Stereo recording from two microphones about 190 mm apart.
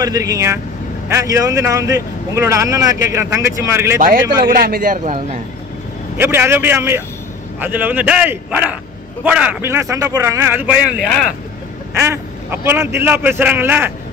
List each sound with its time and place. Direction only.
0.0 s speech: 20° right (ahead or behind)
4.5 s a man's voice: 50° right (ahead or behind)
6.1 s speech: 10° right (ahead or behind)
11.9 s speech: 15° right (ahead or behind)